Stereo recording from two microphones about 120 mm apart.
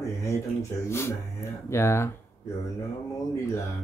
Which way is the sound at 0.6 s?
20° left (ahead or behind).